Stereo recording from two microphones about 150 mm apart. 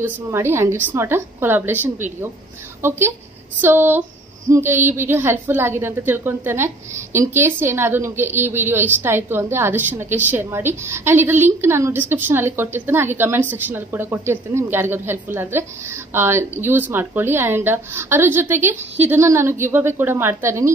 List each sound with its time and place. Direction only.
0.0 s a woman's voice: 15° right (ahead or behind)
3.6 s a woman's voice: 15° right (ahead or behind)